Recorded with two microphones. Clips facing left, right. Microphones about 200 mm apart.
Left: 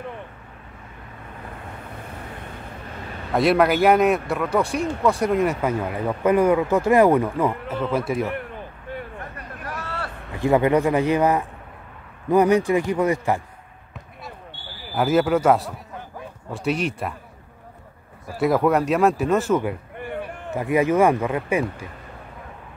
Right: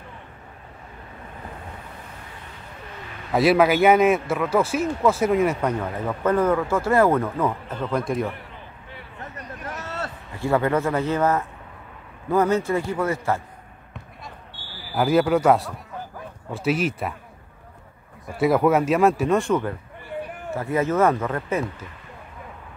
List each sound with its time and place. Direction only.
3.3 s a man's voice: centre (ahead or behind)
9.7 s a sound: 20° right (ahead or behind)
10.4 s speech: 15° left (ahead or behind)
15.0 s a man's voice: centre (ahead or behind)
18.4 s a man's voice: centre (ahead or behind)